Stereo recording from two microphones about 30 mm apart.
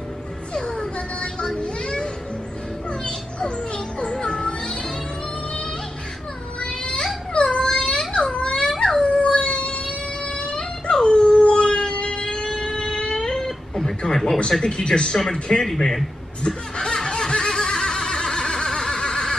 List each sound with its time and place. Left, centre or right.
0.6 s music: left
1.6 s children playing: left
4.1 s music: left
6.8 s a sound: left
8.1 s baby cry: left
8.7 s dog: left
12.1 s music: left
13.0 s a sound: left
13.4 s a sound: centre
14.6 s speech: left
16.4 s snicker: left